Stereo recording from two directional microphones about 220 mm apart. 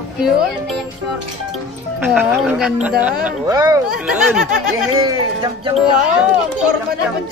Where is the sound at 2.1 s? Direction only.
5° right (ahead or behind).